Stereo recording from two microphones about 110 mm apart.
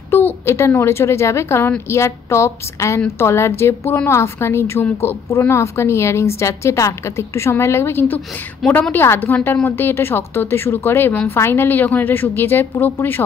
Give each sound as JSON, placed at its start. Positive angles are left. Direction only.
{"t": 0.1, "sound": "a woman's voice", "side_deg": 20}
{"t": 8.6, "sound": "a woman's voice", "side_deg": 5}
{"t": 8.9, "sound": "a woman's voice", "side_deg": 20}